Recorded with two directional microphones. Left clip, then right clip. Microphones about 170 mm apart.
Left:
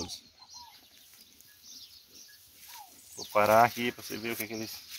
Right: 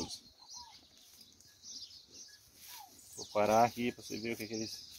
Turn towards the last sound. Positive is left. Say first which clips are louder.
# left 4 dB
turn(degrees=15)  # may be behind; listen again after turning